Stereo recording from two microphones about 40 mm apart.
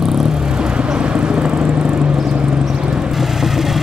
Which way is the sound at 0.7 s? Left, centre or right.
Right.